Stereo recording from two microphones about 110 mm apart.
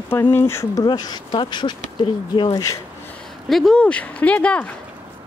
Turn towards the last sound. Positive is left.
turn(degrees=10)  # may be behind; listen again after turning